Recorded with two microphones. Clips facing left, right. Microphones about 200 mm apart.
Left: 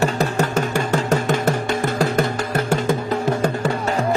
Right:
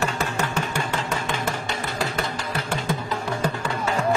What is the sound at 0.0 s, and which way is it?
Music, 40° left (ahead or behind).